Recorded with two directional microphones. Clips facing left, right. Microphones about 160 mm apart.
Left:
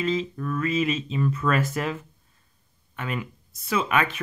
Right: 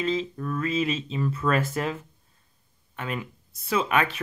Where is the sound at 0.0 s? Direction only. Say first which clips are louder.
Left 1 dB; 35° right (ahead or behind).